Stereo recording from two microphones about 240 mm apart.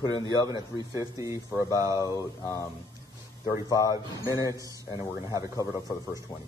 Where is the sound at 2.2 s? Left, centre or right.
Centre.